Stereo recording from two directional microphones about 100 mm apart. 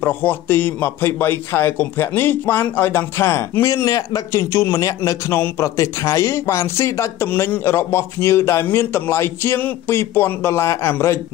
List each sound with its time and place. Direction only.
0.0 s a man's voice: 20° left (ahead or behind)